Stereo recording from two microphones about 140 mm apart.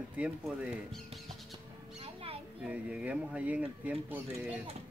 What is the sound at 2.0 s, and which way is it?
Children playing, 45° right (ahead or behind).